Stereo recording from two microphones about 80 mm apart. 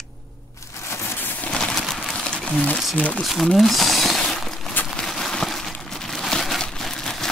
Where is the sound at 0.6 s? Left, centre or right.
Left.